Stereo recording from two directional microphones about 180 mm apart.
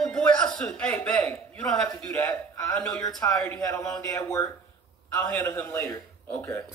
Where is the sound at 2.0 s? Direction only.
5° left (ahead or behind).